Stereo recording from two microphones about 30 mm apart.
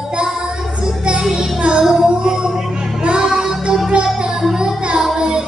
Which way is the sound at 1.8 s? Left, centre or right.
Right.